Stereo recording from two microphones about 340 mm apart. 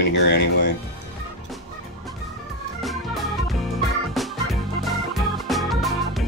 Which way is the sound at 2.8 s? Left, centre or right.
Centre.